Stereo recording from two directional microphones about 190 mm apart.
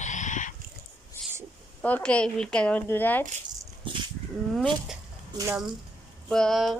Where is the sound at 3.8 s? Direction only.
25° right (ahead or behind).